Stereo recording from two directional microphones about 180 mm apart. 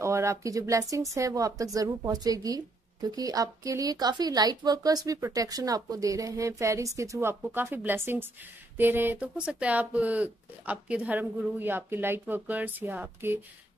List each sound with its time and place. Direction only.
0.0 s speech: 15° right (ahead or behind)